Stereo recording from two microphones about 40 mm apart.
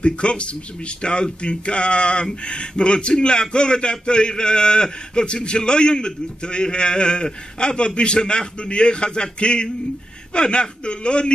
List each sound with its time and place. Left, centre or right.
0.0 s a man's voice: left